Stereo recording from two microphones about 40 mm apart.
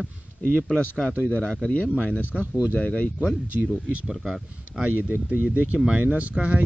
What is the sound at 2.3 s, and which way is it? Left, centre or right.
Speech, right.